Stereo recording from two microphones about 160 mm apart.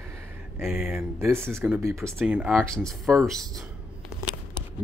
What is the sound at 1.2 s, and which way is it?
Speech, 15° right (ahead or behind).